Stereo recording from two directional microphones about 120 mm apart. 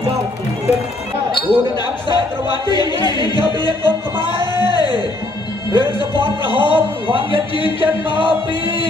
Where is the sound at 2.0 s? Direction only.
35° left (ahead or behind).